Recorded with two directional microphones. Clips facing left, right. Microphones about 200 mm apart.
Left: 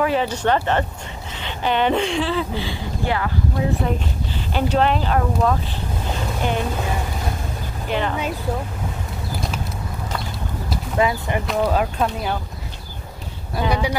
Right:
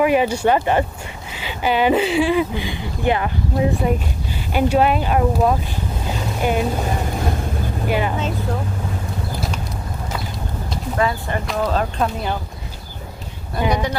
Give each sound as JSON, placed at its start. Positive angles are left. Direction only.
{"t": 0.0, "sound": "speech", "side_deg": -15}
{"t": 4.6, "sound": "speech", "side_deg": -10}
{"t": 7.9, "sound": "speech", "side_deg": -10}
{"t": 11.0, "sound": "speech", "side_deg": 15}
{"t": 13.6, "sound": "speech", "side_deg": -15}